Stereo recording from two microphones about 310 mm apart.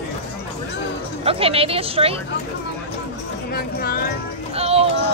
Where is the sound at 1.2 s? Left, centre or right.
Centre.